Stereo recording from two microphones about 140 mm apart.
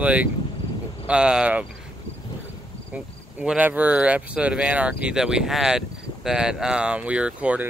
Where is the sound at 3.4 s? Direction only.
10° right (ahead or behind).